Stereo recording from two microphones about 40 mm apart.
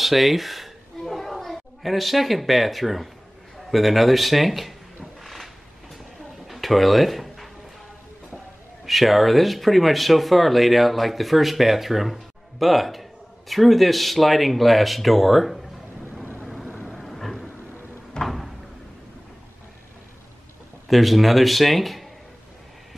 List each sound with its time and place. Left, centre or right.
0.0 s a sound: centre
3.5 s speech: centre
5.2 s a sound: centre
8.8 s speech: centre
16.8 s vehicle: centre
18.2 s door: centre
20.9 s speech: centre